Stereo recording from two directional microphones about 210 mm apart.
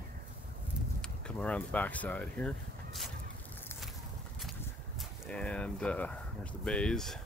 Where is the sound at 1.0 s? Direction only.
5° left (ahead or behind).